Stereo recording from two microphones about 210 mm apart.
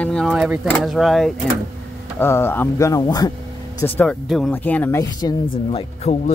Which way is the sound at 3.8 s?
5° left (ahead or behind).